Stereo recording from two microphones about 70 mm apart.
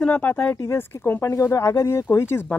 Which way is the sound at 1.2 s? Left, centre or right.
Left.